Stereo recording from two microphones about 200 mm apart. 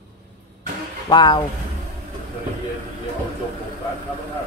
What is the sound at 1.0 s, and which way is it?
Speech, 20° left (ahead or behind).